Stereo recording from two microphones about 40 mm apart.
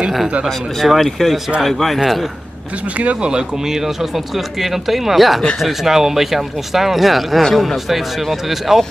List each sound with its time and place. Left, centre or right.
0.8 s speech: centre
3.0 s speech: right
3.6 s speech: centre